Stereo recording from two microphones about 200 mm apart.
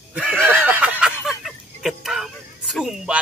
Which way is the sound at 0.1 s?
5° right (ahead or behind).